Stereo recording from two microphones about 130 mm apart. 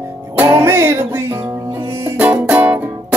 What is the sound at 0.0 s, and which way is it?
Music, 20° right (ahead or behind).